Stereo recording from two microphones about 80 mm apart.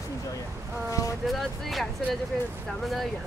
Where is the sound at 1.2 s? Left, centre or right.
Centre.